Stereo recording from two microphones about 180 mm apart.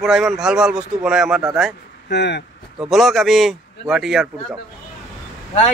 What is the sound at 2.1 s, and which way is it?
Speech, 70° left (ahead or behind).